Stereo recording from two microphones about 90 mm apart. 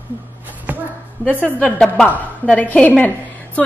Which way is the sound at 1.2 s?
15° left (ahead or behind).